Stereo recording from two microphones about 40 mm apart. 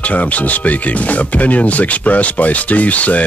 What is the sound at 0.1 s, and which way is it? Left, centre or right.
Speech, left.